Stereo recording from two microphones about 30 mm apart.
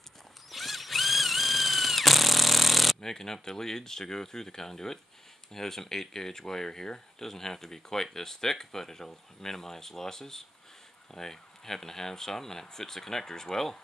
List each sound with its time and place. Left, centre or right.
0.5 s tools: centre
3.0 s speech: centre